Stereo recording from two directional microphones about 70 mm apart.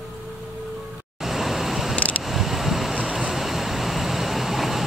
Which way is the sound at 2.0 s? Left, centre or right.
Left.